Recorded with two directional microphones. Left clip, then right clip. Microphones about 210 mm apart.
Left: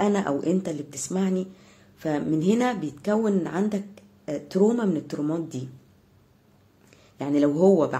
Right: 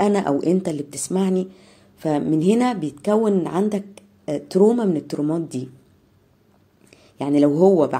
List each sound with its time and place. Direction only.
0.0 s a woman's voice: 15° right (ahead or behind)
6.9 s speech: 15° right (ahead or behind)